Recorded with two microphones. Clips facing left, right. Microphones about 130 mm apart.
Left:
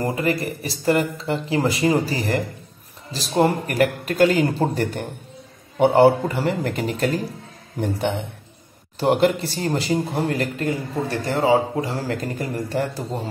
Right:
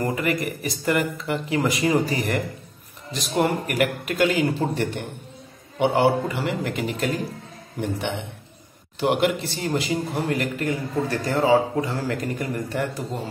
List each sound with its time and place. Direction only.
0.0 s a man's voice: 30° left (ahead or behind)
9.0 s a man's voice: 35° left (ahead or behind)